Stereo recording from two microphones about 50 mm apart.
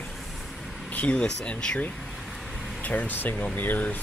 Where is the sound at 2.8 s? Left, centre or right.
Left.